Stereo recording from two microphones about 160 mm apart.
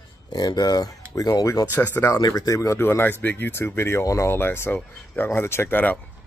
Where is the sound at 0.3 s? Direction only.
25° left (ahead or behind).